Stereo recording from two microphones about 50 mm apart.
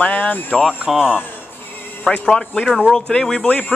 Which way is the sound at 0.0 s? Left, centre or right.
Left.